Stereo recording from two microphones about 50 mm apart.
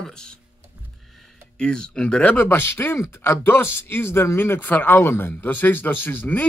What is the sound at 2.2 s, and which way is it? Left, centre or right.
Speech, left.